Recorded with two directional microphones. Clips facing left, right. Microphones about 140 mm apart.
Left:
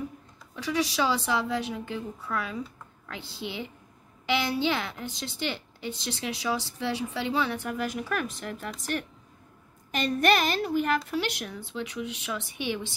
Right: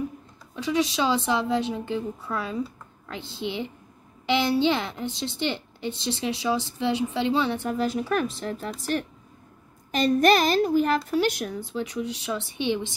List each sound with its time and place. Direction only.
0.6 s a woman's voice: 20° right (ahead or behind)